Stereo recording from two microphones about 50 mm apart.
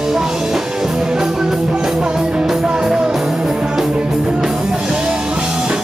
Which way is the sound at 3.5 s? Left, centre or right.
Centre.